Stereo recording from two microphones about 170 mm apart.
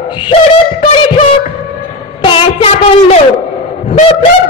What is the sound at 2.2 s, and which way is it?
Child singing, 35° left (ahead or behind).